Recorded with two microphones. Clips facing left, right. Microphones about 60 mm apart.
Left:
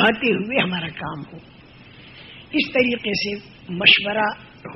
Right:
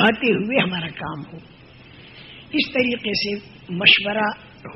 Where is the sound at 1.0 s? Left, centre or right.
Right.